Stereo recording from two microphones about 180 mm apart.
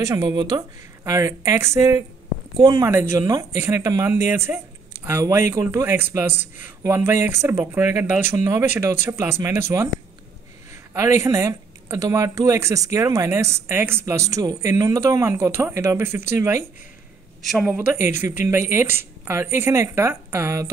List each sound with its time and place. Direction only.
0.0 s speech: 20° right (ahead or behind)
10.9 s speech: 15° right (ahead or behind)
17.4 s speech: centre (ahead or behind)